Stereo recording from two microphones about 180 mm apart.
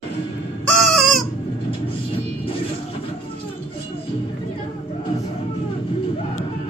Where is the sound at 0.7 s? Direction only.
5° left (ahead or behind).